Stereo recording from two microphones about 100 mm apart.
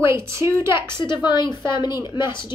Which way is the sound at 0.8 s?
50° left (ahead or behind).